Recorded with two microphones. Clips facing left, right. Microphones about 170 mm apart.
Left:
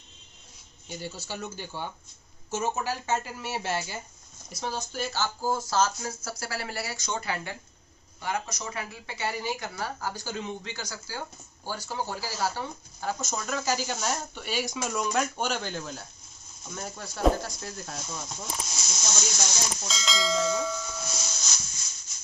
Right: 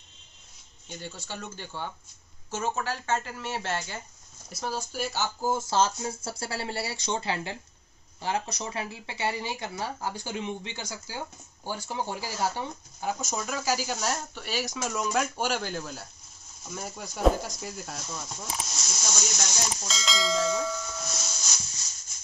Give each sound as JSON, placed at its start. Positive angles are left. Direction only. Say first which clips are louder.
{"t": 0.8, "sound": "speech", "louder": "left 2 dB", "side_deg": 5}
{"t": 4.5, "sound": "speech", "louder": "even", "side_deg": -5}
{"t": 5.5, "sound": "speech", "louder": "right 1 dB", "side_deg": -25}
{"t": 13.2, "sound": "speech", "louder": "even", "side_deg": -10}
{"t": 17.5, "sound": "snake", "louder": "right 1 dB", "side_deg": -5}